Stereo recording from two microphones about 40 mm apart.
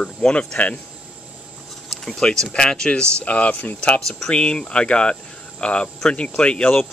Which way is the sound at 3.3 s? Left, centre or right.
Left.